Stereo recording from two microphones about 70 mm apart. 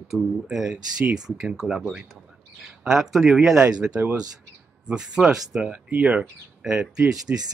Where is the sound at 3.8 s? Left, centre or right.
Right.